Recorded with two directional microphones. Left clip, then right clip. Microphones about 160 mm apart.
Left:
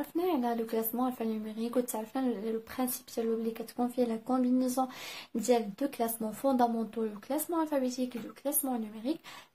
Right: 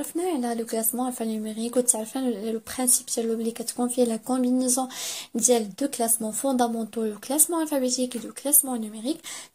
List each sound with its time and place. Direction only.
0.2 s speech: 20° right (ahead or behind)